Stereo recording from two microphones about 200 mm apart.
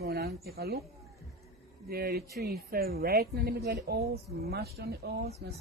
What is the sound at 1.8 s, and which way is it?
A man's voice, 50° right (ahead or behind).